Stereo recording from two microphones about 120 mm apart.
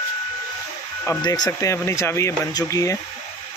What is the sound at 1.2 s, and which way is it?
Speech, 35° left (ahead or behind).